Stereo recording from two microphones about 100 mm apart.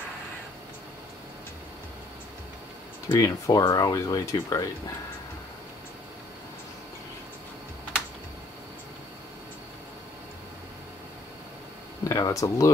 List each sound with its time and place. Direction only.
3.1 s speech: 35° left (ahead or behind)
12.1 s speech: 35° left (ahead or behind)